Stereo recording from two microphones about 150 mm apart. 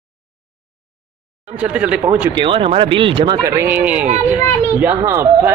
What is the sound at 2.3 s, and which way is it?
A child's voice, 35° right (ahead or behind).